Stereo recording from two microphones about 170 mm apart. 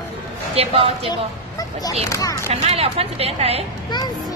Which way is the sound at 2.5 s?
35° right (ahead or behind).